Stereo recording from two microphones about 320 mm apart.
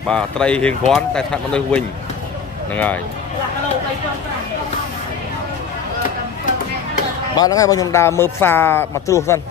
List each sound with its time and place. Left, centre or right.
0.1 s speech: centre
7.3 s speech: centre